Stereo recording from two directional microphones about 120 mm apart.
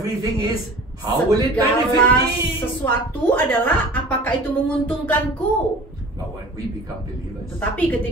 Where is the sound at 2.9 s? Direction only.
15° left (ahead or behind).